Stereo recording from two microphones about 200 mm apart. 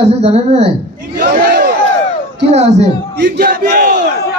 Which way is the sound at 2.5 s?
35° right (ahead or behind).